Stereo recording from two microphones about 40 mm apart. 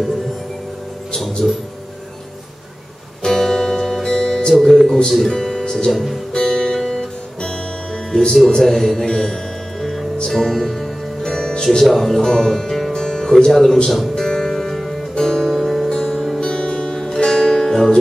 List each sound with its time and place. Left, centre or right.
1.1 s speech: centre
3.3 s music: centre
4.6 s speech: centre
5.3 s music: centre
5.9 s speech: centre
6.3 s music: centre
8.1 s speech: centre
9.0 s music: centre
11.3 s music: centre
11.6 s speech: centre
14.1 s music: centre
16.3 s music: centre